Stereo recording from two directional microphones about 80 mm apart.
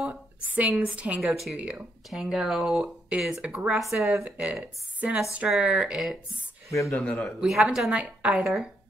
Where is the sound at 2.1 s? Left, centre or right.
Centre.